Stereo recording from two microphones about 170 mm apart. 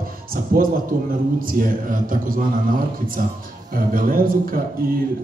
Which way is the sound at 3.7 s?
55° right (ahead or behind).